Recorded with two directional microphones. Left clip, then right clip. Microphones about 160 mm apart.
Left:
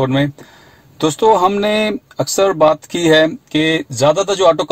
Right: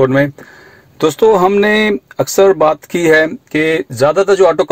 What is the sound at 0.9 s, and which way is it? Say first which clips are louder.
Speech: right 2 dB; 20° right (ahead or behind).